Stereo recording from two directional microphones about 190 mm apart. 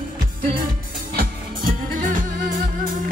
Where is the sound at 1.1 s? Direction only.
50° right (ahead or behind).